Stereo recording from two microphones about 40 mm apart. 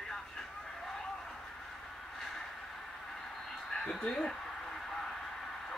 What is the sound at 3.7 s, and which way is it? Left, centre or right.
Speech, centre.